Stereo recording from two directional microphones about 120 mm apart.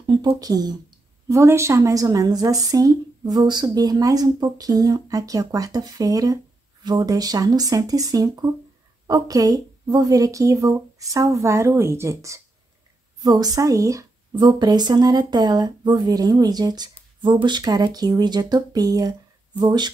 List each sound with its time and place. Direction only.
0.0 s a woman's voice: 35° right (ahead or behind)
1.3 s a woman's voice: 25° right (ahead or behind)